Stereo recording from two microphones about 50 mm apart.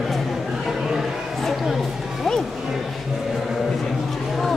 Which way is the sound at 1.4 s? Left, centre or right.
Centre.